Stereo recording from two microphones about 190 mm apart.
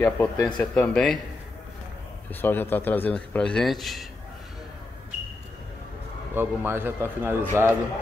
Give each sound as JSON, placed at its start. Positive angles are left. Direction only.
{"t": 0.0, "sound": "a man's voice", "side_deg": 15}
{"t": 0.6, "sound": "speech", "side_deg": 5}
{"t": 2.4, "sound": "a man's voice", "side_deg": 10}
{"t": 6.3, "sound": "a man's voice", "side_deg": -10}